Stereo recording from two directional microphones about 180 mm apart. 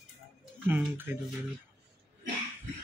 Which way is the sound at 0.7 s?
10° right (ahead or behind).